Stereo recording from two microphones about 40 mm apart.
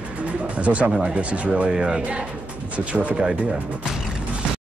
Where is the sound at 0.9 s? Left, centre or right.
Centre.